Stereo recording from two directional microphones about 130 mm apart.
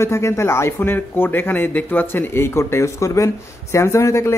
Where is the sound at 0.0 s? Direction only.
20° left (ahead or behind).